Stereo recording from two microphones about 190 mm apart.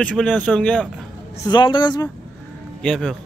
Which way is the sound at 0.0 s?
Centre (ahead or behind).